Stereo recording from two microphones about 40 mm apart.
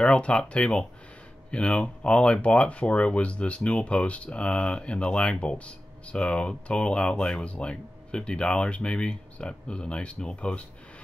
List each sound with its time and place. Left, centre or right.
0.0 s speech: left